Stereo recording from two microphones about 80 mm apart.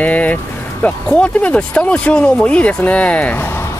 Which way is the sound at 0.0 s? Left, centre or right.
Centre.